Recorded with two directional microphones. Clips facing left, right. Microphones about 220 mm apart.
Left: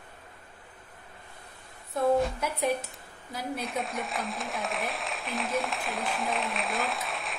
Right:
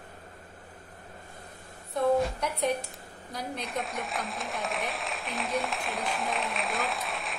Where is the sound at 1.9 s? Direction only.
5° left (ahead or behind).